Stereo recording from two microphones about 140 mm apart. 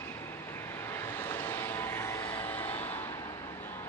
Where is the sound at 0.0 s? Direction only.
20° left (ahead or behind).